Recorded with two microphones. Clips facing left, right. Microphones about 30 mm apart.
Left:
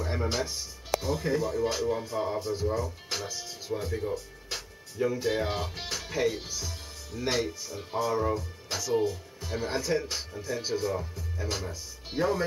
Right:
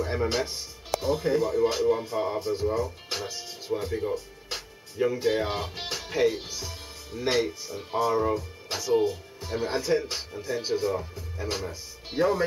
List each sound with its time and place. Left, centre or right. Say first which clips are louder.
0.0 s speech: right 3 dB; centre